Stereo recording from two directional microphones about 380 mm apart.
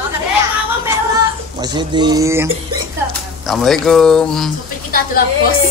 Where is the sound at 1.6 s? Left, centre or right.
Centre.